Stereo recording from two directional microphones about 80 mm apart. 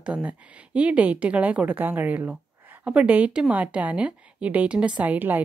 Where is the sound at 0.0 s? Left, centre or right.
Centre.